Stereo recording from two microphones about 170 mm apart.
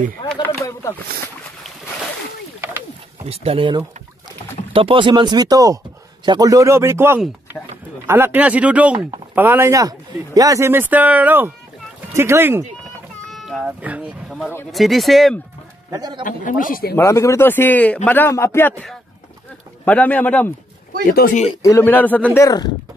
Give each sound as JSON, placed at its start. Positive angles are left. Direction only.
{"t": 3.3, "sound": "speech", "side_deg": -35}
{"t": 13.3, "sound": "cat", "side_deg": 0}
{"t": 14.7, "sound": "speech", "side_deg": 0}
{"t": 15.9, "sound": "speech", "side_deg": -25}
{"t": 16.3, "sound": "speech", "side_deg": 50}
{"t": 16.9, "sound": "a man's voice", "side_deg": 15}
{"t": 21.0, "sound": "speech", "side_deg": 65}
{"t": 21.6, "sound": "a man's voice", "side_deg": 15}